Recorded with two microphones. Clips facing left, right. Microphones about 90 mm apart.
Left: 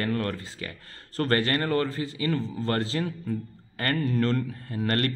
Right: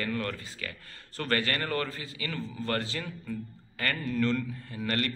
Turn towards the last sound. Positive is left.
turn(degrees=45)  # may be behind; listen again after turning